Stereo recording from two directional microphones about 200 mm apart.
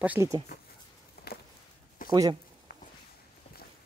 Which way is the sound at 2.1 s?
20° right (ahead or behind).